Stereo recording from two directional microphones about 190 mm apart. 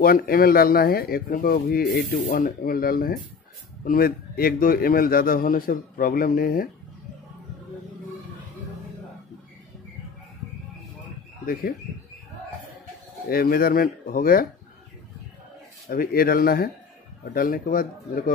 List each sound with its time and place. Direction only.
0.0 s speech: 50° left (ahead or behind)
13.3 s speech: 50° left (ahead or behind)
15.9 s speech: 50° left (ahead or behind)